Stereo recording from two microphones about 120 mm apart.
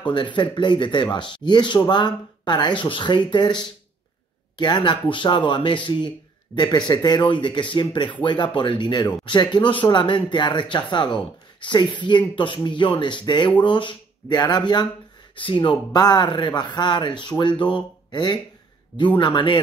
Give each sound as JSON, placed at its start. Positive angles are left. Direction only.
{"t": 0.0, "sound": "speech", "side_deg": 40}